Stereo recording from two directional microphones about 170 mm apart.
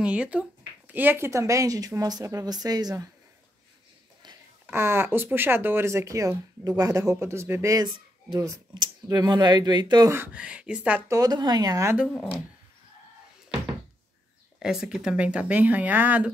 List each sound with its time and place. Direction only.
0.0 s speech: 5° right (ahead or behind); by 3.1 s 25° right (ahead or behind)
4.6 s speech: 15° right (ahead or behind)
10.1 s speech: 10° right (ahead or behind)
12.1 s speech: centre (ahead or behind)
14.6 s speech: 5° right (ahead or behind)